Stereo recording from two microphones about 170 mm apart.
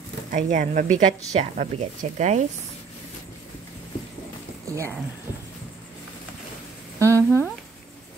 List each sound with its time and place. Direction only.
0.3 s speech: 50° right (ahead or behind)
4.6 s speech: 15° right (ahead or behind)
7.1 s speech: 15° left (ahead or behind)